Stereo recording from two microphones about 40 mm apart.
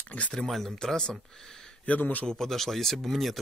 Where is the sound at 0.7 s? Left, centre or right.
Centre.